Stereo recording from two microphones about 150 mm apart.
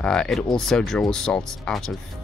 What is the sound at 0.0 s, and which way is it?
Speech, 5° left (ahead or behind).